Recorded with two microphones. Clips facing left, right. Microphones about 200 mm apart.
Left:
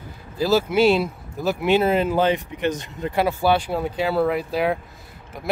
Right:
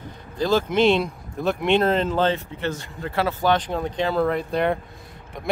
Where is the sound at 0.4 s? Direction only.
5° left (ahead or behind).